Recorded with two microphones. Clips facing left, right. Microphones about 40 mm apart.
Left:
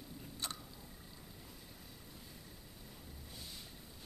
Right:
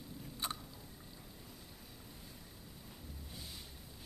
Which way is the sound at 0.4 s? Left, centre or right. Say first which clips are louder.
Right 3 dB; centre.